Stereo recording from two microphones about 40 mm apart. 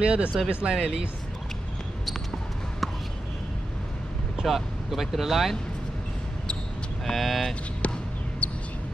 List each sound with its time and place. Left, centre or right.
0.0 s speech: right
4.5 s speech: centre
7.1 s speech: centre
7.8 s basketball bounce: left
8.4 s a sound: left